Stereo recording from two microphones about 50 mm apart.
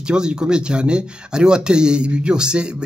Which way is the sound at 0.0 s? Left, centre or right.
Centre.